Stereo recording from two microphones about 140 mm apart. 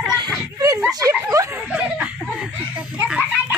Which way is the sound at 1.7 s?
10° right (ahead or behind).